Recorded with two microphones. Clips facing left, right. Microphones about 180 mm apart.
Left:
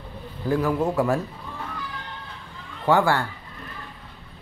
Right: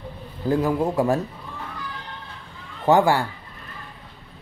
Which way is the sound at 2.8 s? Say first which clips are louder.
Right 3 dB; 20° right (ahead or behind).